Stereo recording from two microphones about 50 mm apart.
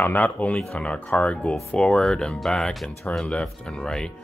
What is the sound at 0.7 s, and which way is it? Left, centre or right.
Speech, left.